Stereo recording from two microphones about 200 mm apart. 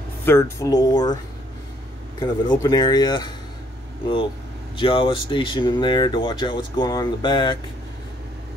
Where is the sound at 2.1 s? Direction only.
20° left (ahead or behind).